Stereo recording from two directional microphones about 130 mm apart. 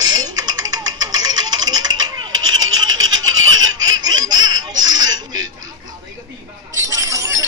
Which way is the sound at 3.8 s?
30° right (ahead or behind).